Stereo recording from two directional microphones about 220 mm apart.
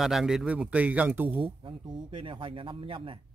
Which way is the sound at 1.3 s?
25° right (ahead or behind).